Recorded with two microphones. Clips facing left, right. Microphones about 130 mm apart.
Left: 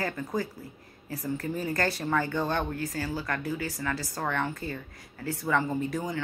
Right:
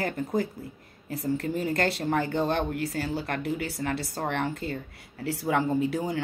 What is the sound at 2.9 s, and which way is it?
Speech, 65° right (ahead or behind).